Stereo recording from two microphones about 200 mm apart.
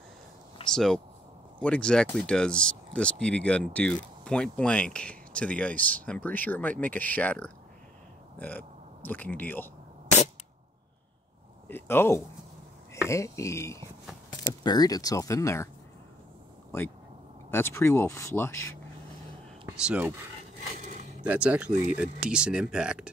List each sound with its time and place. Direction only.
0.7 s speech: centre (ahead or behind)
11.6 s a sound: 10° left (ahead or behind)
13.1 s speech: 15° left (ahead or behind)
16.7 s speech: 10° left (ahead or behind)
19.9 s speech: 10° right (ahead or behind)
21.2 s speech: 5° right (ahead or behind)